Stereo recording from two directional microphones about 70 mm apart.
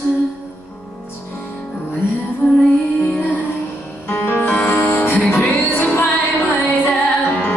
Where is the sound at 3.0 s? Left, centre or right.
Left.